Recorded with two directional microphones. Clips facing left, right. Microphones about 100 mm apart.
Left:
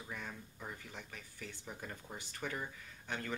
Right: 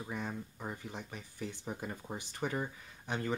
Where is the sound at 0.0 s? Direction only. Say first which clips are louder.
Right 7 dB; 25° right (ahead or behind).